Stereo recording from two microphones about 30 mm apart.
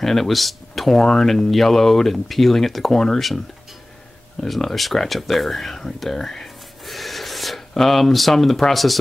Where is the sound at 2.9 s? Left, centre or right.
Centre.